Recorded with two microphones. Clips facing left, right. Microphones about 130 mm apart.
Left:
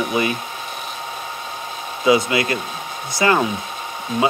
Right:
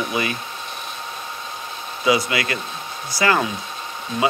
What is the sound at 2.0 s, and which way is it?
Speech, 25° left (ahead or behind).